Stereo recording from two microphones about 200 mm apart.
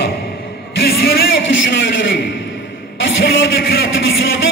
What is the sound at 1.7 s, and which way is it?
Speech, 65° left (ahead or behind).